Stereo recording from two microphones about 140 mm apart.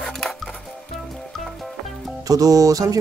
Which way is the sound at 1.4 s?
Centre (ahead or behind).